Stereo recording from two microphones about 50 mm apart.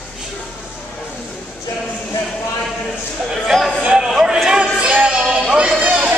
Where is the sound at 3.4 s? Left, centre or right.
Centre.